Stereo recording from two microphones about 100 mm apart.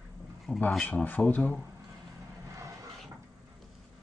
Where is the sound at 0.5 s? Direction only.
15° left (ahead or behind).